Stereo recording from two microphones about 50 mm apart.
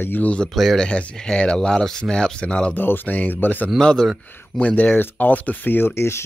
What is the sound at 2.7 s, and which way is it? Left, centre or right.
Speech, left.